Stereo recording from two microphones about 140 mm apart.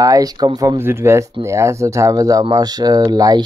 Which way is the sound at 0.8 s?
15° right (ahead or behind).